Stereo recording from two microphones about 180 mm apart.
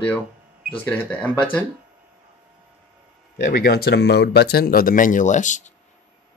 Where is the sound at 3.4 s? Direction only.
55° left (ahead or behind).